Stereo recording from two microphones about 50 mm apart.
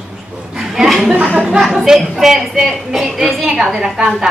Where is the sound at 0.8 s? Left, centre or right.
Centre.